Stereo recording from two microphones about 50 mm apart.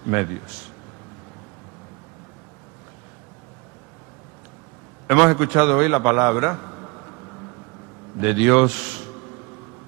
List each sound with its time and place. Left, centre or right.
0.0 s a man's voice: centre
5.1 s a man's voice: centre